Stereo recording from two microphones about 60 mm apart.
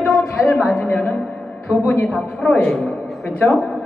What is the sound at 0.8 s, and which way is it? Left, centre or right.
Speech, left.